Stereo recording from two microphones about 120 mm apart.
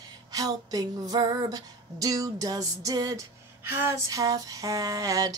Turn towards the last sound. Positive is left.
turn(degrees=-30)  # may be behind; listen again after turning